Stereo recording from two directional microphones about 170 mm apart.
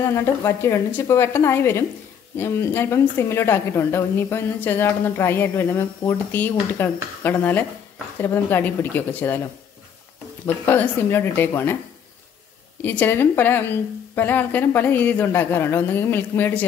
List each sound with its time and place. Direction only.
0.0 s a woman's voice: 15° left (ahead or behind)
10.4 s a woman's voice: 10° left (ahead or behind)
12.8 s a woman's voice: 10° left (ahead or behind)